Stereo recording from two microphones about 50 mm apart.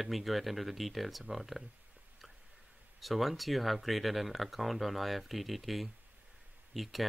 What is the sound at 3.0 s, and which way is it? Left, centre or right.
Speech, centre.